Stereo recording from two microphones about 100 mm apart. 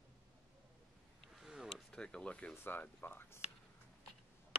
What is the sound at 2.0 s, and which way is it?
Speech, 10° left (ahead or behind).